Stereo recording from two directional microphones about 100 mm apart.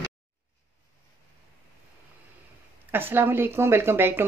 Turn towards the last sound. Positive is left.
turn(degrees=-25)  # may be behind; listen again after turning